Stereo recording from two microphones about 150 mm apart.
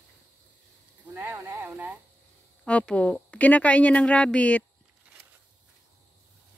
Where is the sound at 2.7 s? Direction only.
10° left (ahead or behind).